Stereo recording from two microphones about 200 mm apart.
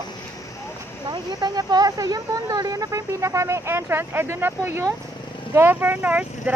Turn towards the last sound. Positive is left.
turn(degrees=-10)  # may be behind; listen again after turning